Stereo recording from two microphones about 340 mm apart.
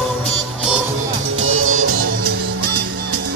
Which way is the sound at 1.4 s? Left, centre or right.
Right.